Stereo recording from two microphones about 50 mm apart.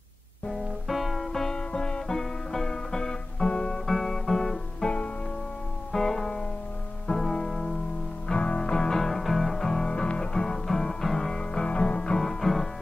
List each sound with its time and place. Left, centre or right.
0.5 s music: centre
4.8 s music: left
5.9 s music: centre
8.3 s music: left
12.2 s music: centre